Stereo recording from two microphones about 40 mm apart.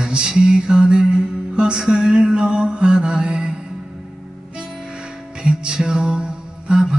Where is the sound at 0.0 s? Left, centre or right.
Centre.